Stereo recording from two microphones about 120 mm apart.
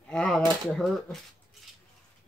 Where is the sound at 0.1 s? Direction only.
5° left (ahead or behind).